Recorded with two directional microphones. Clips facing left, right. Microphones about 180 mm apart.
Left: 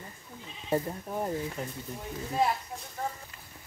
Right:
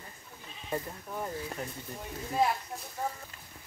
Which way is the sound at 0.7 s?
30° left (ahead or behind).